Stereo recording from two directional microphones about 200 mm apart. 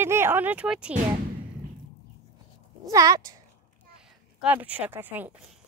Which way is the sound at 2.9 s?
15° right (ahead or behind).